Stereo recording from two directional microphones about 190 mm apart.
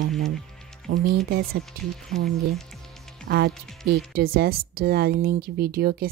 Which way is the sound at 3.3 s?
60° right (ahead or behind).